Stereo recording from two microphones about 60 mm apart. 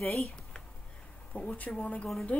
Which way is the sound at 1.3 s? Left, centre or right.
Left.